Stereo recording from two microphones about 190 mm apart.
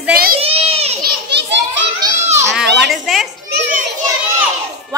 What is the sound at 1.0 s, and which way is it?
Children playing, 65° right (ahead or behind).